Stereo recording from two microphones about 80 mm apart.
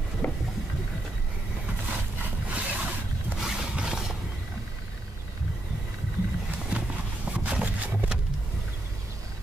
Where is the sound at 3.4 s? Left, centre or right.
Centre.